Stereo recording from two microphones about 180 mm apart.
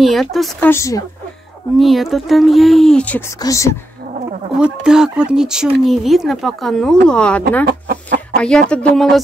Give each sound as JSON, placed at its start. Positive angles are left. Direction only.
{"t": 0.0, "sound": "speech", "side_deg": 0}
{"t": 0.7, "sound": "speech", "side_deg": 15}
{"t": 1.8, "sound": "speech", "side_deg": 0}
{"t": 4.6, "sound": "speech", "side_deg": -5}
{"t": 7.6, "sound": "chicken", "side_deg": -65}
{"t": 8.4, "sound": "speech", "side_deg": 5}